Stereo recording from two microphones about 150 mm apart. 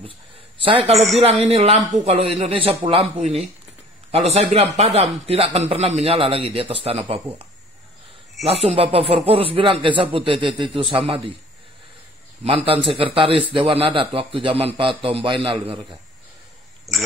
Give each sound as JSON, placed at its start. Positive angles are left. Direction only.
{"t": 0.6, "sound": "a man's voice", "side_deg": -35}
{"t": 0.9, "sound": "a man's voice", "side_deg": 0}
{"t": 1.2, "sound": "a man's voice", "side_deg": -45}
{"t": 8.5, "sound": "a man's voice", "side_deg": -40}
{"t": 12.4, "sound": "a man's voice", "side_deg": -35}
{"t": 16.9, "sound": "speech", "side_deg": 0}